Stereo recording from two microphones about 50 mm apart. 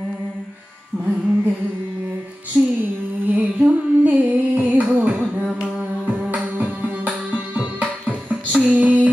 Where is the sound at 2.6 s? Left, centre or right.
Centre.